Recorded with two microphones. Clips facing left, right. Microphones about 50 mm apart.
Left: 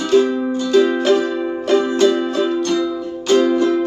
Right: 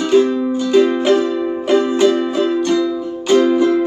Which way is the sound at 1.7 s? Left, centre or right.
Centre.